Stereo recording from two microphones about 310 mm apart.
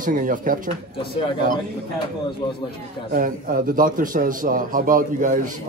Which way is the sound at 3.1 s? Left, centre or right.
Right.